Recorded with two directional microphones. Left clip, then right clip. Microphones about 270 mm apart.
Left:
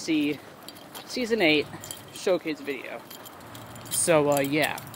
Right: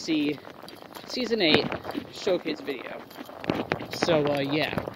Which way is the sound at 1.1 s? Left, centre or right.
Centre.